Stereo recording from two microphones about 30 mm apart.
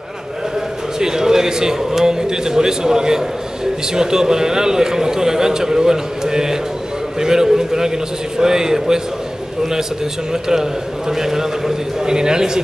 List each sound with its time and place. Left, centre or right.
0.9 s a man's voice: centre
12.1 s a man's voice: right